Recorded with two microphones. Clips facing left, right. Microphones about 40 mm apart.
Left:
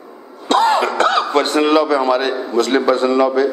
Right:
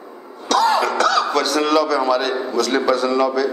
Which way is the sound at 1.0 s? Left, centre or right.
Left.